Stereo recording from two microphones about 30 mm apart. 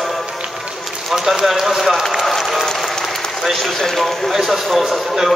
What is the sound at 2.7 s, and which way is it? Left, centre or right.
Applause, centre.